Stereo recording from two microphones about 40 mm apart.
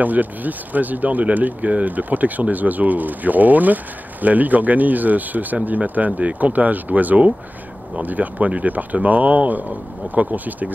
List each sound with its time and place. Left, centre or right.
0.0 s speech: right